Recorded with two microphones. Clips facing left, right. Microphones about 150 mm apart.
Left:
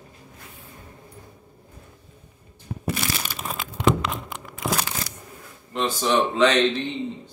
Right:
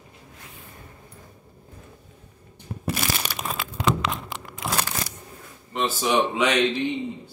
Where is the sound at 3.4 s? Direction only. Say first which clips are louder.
Right 1 dB; 90° right.